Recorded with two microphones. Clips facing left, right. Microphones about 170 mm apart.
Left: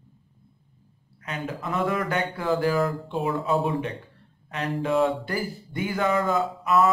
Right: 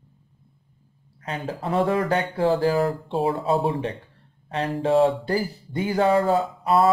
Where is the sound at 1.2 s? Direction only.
30° right (ahead or behind).